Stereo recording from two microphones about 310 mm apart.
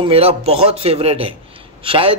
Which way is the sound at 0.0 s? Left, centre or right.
Centre.